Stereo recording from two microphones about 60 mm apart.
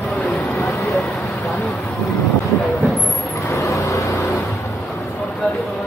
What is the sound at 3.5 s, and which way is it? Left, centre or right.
Vehicle, left.